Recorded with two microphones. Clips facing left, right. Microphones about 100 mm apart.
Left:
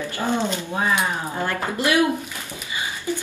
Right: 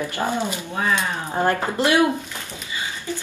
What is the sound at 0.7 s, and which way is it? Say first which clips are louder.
Speech: right 1 dB; 20° left (ahead or behind).